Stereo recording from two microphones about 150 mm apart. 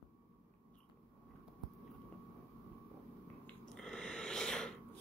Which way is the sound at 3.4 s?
5° left (ahead or behind).